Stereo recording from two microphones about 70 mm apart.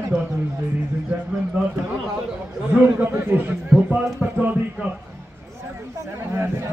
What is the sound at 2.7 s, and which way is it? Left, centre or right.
Speech, right.